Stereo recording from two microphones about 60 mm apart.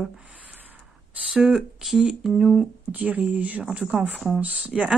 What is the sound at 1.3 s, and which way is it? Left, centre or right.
Speech, centre.